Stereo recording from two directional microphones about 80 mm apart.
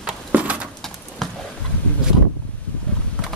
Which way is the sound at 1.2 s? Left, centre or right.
Centre.